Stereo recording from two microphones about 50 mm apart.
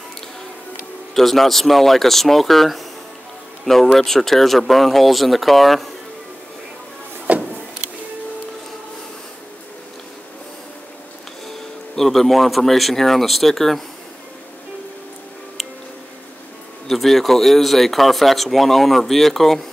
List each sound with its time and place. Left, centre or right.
1.1 s speech: centre
7.3 s power windows: right
11.4 s speech: centre
15.6 s music: centre
16.8 s speech: centre